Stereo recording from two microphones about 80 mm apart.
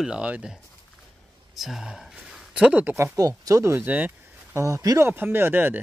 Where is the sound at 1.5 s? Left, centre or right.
Centre.